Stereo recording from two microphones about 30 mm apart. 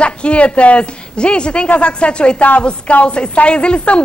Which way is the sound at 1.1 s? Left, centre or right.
Left.